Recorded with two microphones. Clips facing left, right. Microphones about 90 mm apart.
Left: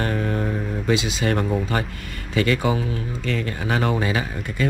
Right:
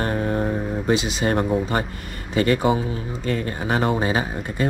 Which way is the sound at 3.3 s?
90° left.